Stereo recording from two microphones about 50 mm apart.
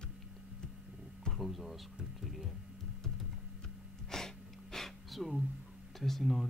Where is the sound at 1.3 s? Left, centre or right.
Centre.